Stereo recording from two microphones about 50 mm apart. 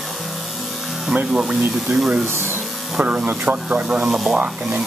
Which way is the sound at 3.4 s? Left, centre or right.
Centre.